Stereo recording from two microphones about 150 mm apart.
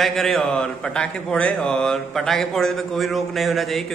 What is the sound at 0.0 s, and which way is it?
A man's voice, centre (ahead or behind).